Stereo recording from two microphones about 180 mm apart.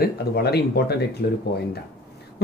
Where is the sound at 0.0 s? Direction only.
60° left (ahead or behind).